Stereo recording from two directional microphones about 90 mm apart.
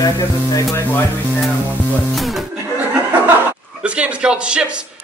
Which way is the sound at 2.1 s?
Centre (ahead or behind).